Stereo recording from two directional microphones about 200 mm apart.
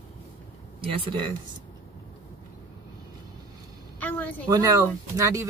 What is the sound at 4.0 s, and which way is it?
Speech, 10° left (ahead or behind).